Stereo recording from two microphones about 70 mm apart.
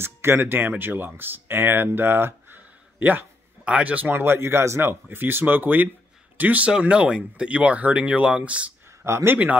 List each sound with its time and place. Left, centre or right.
0.0 s speech: right; by 8.6 s centre
9.0 s speech: right